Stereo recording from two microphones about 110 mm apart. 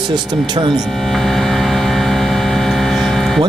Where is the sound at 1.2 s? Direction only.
5° left (ahead or behind).